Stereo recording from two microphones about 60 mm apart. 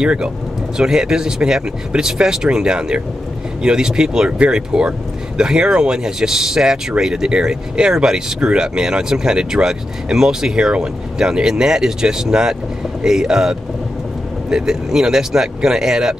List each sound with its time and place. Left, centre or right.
0.0 s speech: centre